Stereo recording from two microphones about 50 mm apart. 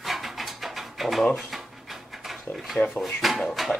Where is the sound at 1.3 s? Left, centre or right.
Centre.